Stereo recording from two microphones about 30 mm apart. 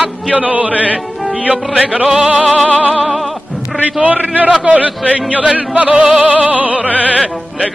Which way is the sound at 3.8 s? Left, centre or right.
Right.